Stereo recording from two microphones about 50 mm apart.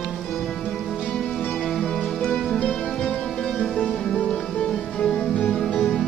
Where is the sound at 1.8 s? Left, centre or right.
Centre.